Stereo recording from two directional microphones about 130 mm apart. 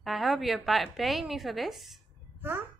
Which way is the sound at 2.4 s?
15° right (ahead or behind).